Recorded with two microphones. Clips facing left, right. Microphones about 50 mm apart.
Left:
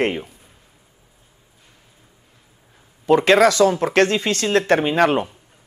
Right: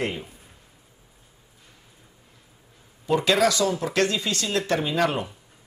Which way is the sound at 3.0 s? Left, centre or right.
Left.